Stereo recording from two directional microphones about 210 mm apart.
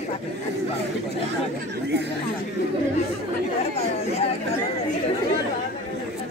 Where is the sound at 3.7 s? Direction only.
30° left (ahead or behind).